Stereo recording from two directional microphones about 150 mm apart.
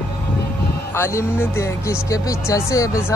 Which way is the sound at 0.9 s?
15° left (ahead or behind).